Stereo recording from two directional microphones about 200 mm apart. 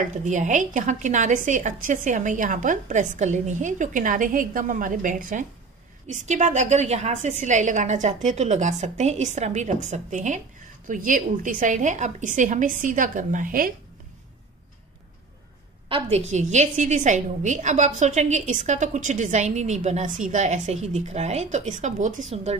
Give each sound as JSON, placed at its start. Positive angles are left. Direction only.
{"t": 0.0, "sound": "a woman's voice", "side_deg": -35}
{"t": 15.9, "sound": "a woman's voice", "side_deg": -35}